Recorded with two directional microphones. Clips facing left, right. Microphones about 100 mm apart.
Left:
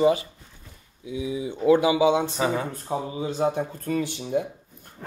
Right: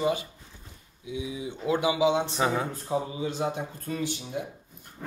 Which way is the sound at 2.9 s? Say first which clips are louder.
Even; 35° left (ahead or behind).